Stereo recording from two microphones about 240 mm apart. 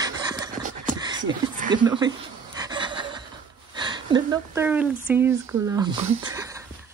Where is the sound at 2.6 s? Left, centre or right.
Centre.